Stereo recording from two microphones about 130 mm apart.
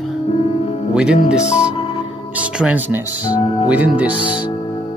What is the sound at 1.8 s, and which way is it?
Music, 40° left (ahead or behind).